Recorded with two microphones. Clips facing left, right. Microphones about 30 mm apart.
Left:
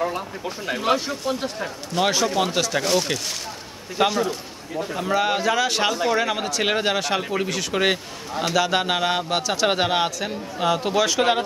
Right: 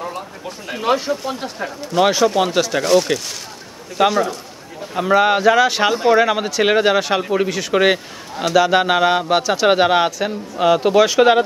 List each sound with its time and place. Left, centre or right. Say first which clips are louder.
0.7 s speech: right 5 dB; centre
4.9 s a man's voice: right 8 dB; right